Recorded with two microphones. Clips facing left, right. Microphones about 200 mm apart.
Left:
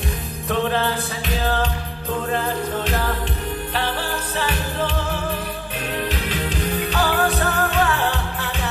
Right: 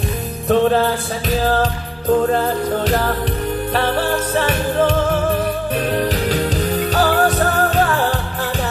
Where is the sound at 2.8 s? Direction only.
45° right (ahead or behind).